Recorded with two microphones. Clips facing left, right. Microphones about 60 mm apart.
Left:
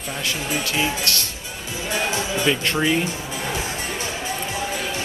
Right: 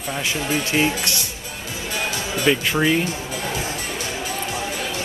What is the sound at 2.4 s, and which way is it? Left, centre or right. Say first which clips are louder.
Speech: right 3 dB; centre.